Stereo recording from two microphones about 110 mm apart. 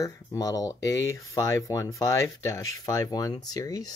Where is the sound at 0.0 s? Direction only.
30° left (ahead or behind).